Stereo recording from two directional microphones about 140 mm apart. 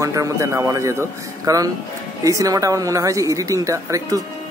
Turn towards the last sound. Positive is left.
turn(degrees=-25)  # may be behind; listen again after turning